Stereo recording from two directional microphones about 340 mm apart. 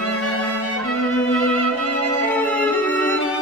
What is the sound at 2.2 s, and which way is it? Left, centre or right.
Violin, centre.